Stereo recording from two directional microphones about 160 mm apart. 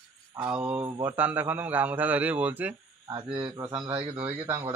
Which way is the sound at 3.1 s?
25° right (ahead or behind).